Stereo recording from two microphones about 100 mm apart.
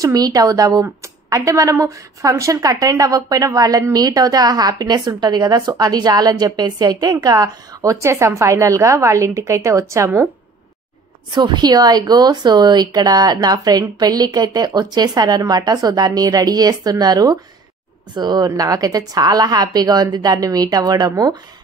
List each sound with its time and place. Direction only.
0.0 s speech: 40° right (ahead or behind)
11.2 s speech: 50° right (ahead or behind)